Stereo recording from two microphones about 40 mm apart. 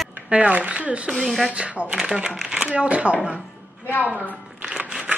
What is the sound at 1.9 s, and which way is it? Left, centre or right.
Speech, right.